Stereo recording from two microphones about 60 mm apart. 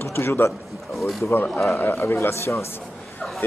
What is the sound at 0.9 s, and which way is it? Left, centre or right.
Speech, centre.